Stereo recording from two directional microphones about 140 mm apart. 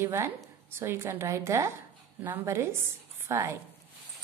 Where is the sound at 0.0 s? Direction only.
20° right (ahead or behind).